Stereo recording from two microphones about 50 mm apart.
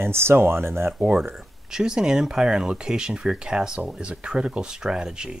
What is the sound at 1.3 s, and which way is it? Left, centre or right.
Speech, centre.